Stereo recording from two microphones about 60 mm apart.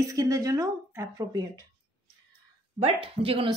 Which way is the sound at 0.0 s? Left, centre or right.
Right.